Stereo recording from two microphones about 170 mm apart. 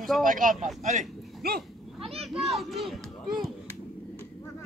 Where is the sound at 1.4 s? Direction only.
65° right (ahead or behind).